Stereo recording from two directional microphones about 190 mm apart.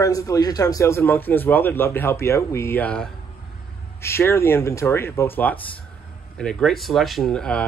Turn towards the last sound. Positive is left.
turn(degrees=5)  # may be behind; listen again after turning